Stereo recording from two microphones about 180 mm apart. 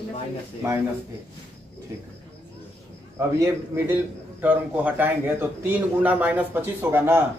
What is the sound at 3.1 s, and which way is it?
A man's voice, 15° right (ahead or behind).